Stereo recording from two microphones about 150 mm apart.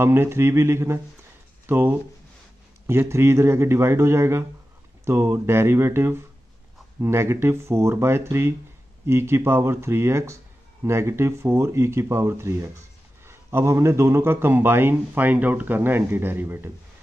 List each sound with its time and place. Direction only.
0.0 s speech: 15° right (ahead or behind)